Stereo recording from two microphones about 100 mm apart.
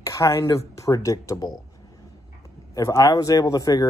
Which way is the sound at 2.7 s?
30° left (ahead or behind).